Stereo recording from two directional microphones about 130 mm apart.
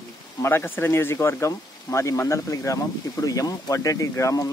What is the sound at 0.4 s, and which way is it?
Speech, 20° left (ahead or behind).